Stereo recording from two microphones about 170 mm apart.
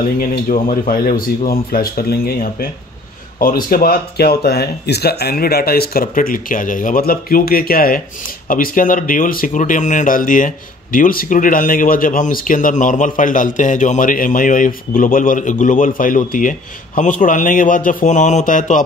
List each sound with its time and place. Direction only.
0.2 s speech: 55° left (ahead or behind)